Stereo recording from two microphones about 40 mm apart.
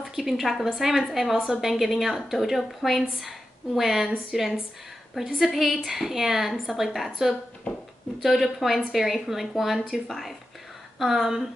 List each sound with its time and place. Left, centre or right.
0.0 s a woman's voice: centre
11.0 s speech: centre